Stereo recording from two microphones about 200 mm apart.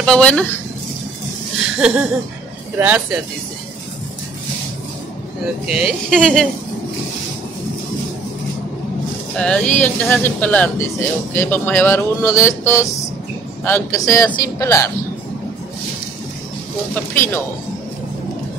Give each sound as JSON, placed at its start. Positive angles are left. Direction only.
{"t": 0.0, "sound": "speech", "side_deg": 5}
{"t": 1.8, "sound": "speech", "side_deg": -5}
{"t": 5.7, "sound": "speech", "side_deg": -5}
{"t": 9.4, "sound": "speech", "side_deg": 5}
{"t": 16.9, "sound": "speech", "side_deg": 10}